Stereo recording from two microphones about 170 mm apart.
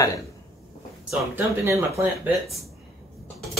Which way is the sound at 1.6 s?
15° right (ahead or behind).